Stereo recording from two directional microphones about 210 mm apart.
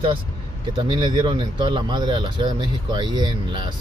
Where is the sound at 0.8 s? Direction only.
20° right (ahead or behind).